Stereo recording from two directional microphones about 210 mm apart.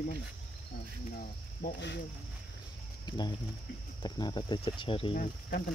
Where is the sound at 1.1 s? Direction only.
50° left (ahead or behind).